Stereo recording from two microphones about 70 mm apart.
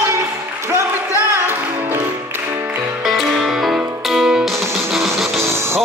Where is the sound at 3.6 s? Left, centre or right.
Centre.